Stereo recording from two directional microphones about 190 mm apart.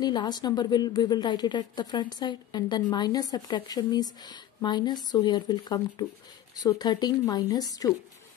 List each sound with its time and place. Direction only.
0.0 s speech: 20° left (ahead or behind)